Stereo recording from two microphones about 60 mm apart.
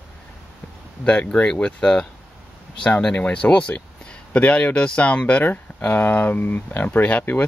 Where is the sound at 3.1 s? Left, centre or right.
Left.